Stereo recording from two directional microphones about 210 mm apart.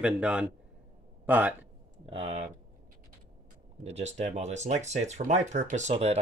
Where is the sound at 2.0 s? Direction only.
25° right (ahead or behind).